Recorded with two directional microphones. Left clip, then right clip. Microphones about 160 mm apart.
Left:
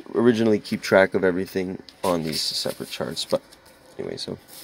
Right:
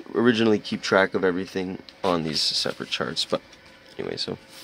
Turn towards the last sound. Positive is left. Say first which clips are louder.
# right 1 dB
turn(degrees=-5)  # may be behind; listen again after turning